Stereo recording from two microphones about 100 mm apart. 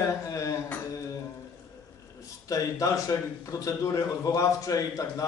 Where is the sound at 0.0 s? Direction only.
30° left (ahead or behind).